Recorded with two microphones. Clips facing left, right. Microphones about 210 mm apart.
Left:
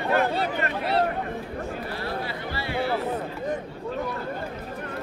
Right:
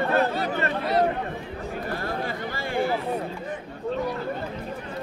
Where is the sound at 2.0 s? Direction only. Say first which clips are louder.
Right 1 dB; 50° right (ahead or behind).